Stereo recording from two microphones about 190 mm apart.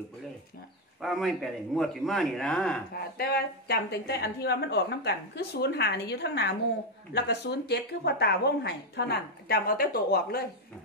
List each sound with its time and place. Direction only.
1.0 s speech: centre (ahead or behind)
3.2 s a woman's voice: 55° left (ahead or behind)